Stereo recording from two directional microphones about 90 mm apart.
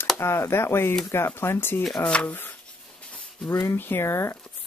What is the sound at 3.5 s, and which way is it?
Speech, 30° left (ahead or behind).